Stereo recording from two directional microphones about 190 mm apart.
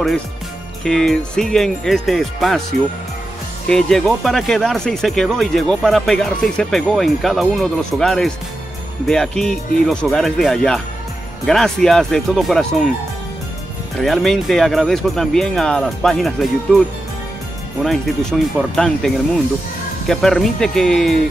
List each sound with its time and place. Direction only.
0.8 s speech: centre (ahead or behind)
3.6 s speech: 5° left (ahead or behind)
14.0 s speech: centre (ahead or behind)
17.8 s speech: centre (ahead or behind)